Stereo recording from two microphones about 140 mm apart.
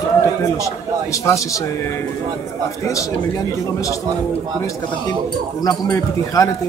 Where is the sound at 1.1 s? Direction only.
25° left (ahead or behind).